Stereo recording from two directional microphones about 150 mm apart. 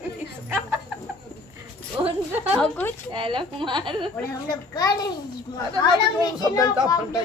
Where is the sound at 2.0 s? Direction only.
25° right (ahead or behind).